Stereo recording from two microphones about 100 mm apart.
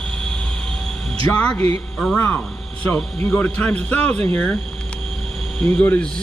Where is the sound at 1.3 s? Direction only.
10° left (ahead or behind).